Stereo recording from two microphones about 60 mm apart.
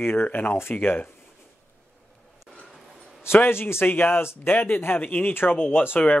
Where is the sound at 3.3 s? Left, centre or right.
Left.